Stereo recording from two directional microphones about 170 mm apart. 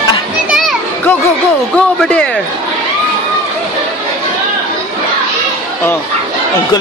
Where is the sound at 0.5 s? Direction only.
Centre (ahead or behind).